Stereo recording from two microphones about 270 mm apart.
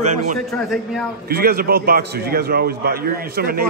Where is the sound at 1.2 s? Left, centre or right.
Right.